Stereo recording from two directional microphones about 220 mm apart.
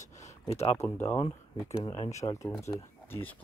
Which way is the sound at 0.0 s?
30° left (ahead or behind).